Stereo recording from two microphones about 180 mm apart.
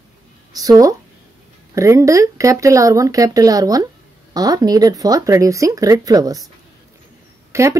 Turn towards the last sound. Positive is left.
turn(degrees=-15)  # may be behind; listen again after turning